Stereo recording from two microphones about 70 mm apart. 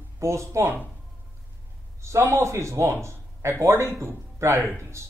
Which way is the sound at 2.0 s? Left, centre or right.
Right.